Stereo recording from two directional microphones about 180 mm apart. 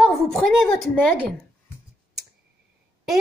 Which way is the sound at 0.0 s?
Centre (ahead or behind).